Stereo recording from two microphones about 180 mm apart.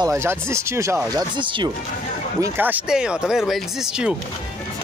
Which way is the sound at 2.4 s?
10° right (ahead or behind).